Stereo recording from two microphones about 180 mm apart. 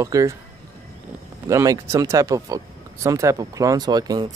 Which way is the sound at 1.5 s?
15° right (ahead or behind).